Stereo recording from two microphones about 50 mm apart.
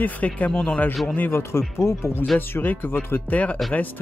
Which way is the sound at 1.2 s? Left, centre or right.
Left.